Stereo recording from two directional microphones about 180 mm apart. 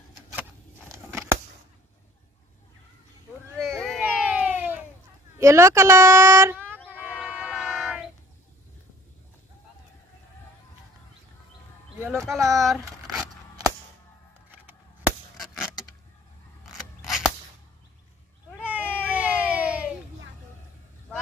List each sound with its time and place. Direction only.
0.3 s scissors: 15° right (ahead or behind)
3.5 s a sound: centre (ahead or behind)
5.4 s speech: 15° right (ahead or behind)
7.1 s train: 5° right (ahead or behind)
12.0 s a sound: 15° right (ahead or behind)
12.5 s vehicle: centre (ahead or behind)
13.2 s scissors: 20° right (ahead or behind)
14.5 s chop: 10° right (ahead or behind)
15.6 s vehicle: 5° right (ahead or behind)
18.6 s cat: 10° right (ahead or behind)
19.1 s a sound: 10° right (ahead or behind)